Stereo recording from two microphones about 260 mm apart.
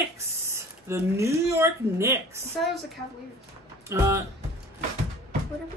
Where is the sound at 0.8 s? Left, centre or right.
Centre.